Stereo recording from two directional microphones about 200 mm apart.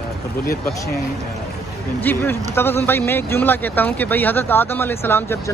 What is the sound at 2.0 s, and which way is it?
Speech, 10° left (ahead or behind).